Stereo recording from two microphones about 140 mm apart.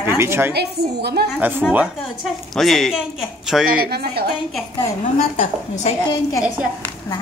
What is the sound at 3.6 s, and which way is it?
Speech, 90° right.